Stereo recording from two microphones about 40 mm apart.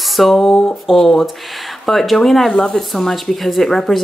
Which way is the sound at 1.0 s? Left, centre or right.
Centre.